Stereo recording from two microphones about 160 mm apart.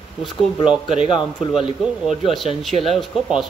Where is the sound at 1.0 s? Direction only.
30° left (ahead or behind).